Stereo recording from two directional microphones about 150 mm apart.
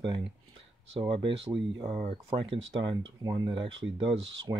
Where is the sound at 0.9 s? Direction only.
35° right (ahead or behind).